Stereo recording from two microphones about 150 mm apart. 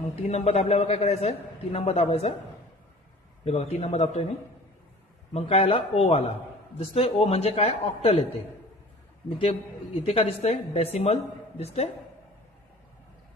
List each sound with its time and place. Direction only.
0.1 s a man's voice: 45° left (ahead or behind)
3.4 s a man's voice: 45° left (ahead or behind)
5.3 s a man's voice: 40° left (ahead or behind)
10.0 s a man's voice: 40° left (ahead or behind)